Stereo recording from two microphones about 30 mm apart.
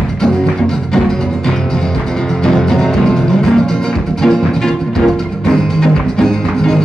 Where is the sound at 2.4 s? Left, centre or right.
Centre.